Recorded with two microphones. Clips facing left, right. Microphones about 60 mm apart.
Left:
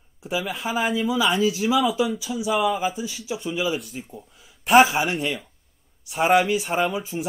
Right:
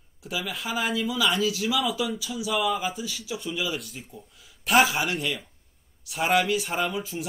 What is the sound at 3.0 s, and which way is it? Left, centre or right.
Speech, left.